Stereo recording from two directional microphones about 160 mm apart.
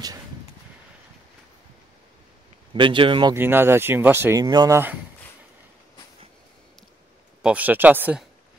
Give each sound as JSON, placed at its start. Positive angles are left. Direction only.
{"t": 2.7, "sound": "speech", "side_deg": -30}
{"t": 3.3, "sound": "speech", "side_deg": -15}
{"t": 7.4, "sound": "speech", "side_deg": -10}